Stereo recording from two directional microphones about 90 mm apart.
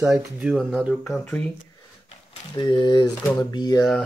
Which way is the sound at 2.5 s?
55° left (ahead or behind).